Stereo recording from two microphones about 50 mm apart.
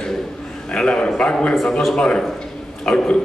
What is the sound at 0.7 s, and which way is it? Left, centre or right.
A man's voice, centre.